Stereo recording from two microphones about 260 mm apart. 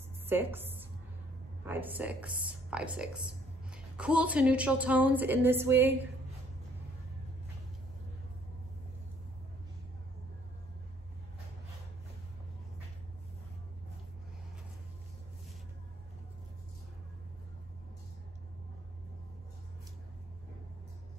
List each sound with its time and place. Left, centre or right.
0.3 s a woman's voice: centre
1.7 s a woman's voice: centre